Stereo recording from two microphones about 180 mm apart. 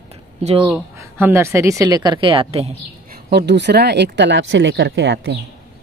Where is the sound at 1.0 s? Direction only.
10° right (ahead or behind); by 2.7 s 35° right (ahead or behind).